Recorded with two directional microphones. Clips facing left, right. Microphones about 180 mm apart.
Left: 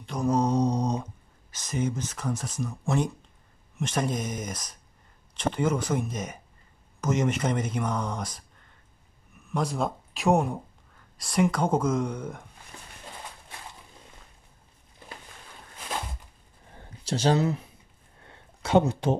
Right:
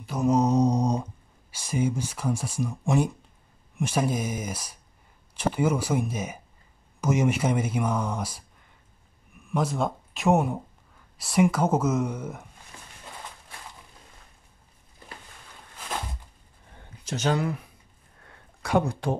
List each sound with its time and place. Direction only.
0.0 s mantra: 5° right (ahead or behind)
1.5 s speech: 10° right (ahead or behind)
9.5 s speech: 5° right (ahead or behind)
17.0 s speech: 30° left (ahead or behind)
18.2 s a sound: 25° left (ahead or behind)